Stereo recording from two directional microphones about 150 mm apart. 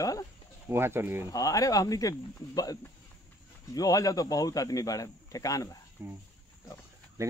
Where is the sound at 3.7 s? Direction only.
25° left (ahead or behind).